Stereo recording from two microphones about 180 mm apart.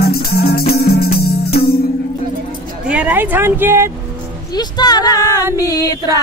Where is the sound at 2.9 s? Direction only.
10° right (ahead or behind).